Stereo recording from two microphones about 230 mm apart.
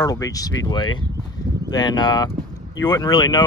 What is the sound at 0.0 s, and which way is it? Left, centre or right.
Speech, centre.